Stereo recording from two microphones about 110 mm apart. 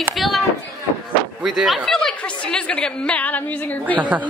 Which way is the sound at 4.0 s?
15° right (ahead or behind).